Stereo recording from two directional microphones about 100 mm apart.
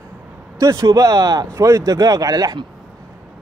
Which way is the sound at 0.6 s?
35° right (ahead or behind).